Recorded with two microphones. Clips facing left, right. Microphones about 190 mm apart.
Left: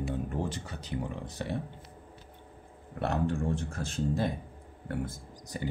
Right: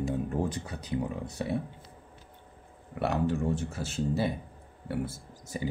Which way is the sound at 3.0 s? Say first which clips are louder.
Right 2 dB; 5° right (ahead or behind).